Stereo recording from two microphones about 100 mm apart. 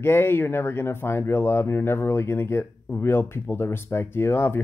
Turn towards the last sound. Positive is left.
turn(degrees=25)  # may be behind; listen again after turning